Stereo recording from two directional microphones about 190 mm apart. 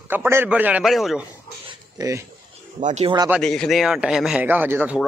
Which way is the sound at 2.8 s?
35° right (ahead or behind).